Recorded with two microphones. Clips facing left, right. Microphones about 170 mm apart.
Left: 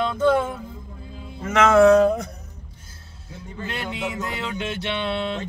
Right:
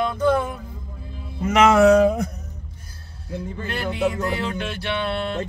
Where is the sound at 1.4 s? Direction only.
10° right (ahead or behind).